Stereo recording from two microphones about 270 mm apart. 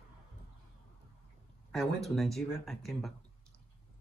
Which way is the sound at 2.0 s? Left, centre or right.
Centre.